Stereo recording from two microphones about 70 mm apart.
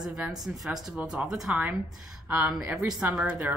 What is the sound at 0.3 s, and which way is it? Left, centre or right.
Speech, centre.